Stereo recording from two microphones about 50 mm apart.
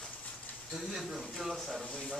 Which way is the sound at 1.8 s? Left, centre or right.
Left.